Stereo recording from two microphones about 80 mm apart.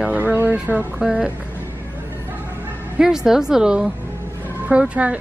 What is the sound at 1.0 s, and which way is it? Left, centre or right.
Speech, centre.